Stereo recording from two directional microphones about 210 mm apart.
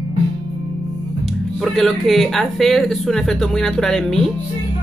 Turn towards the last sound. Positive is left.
turn(degrees=0)  # may be behind; listen again after turning